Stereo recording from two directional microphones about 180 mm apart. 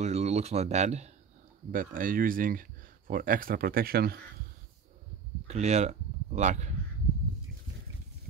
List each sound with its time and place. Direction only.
0.0 s speech: 35° right (ahead or behind)
1.7 s speech: 50° right (ahead or behind)
5.5 s speech: 40° right (ahead or behind)